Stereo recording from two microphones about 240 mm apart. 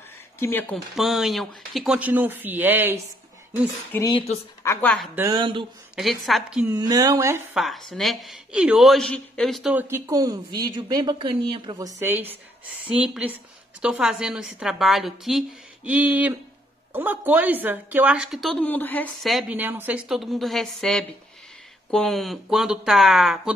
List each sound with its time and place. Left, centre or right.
0.4 s a woman's voice: centre
3.9 s a woman's voice: centre
5.1 s speech: centre
5.9 s a woman's voice: centre
6.7 s speech: centre
7.5 s a woman's voice: centre